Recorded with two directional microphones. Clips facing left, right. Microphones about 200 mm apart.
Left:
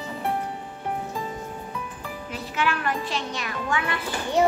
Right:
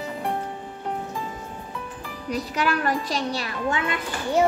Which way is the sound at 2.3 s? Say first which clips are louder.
Right 3 dB; 40° right (ahead or behind).